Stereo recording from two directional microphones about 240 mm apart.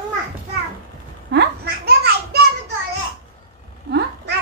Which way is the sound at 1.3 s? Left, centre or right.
Right.